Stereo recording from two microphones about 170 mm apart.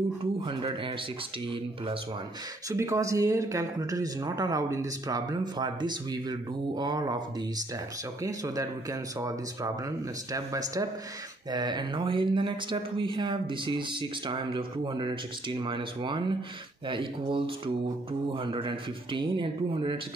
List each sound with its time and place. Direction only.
0.5 s speech: 30° right (ahead or behind)
2.7 s speech: 15° right (ahead or behind)